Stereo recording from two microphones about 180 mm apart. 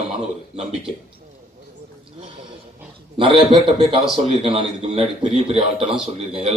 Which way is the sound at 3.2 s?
30° right (ahead or behind).